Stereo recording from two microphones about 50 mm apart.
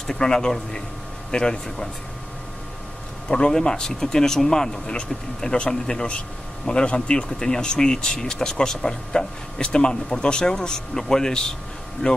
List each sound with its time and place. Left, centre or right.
0.0 s speech: centre
3.3 s speech: centre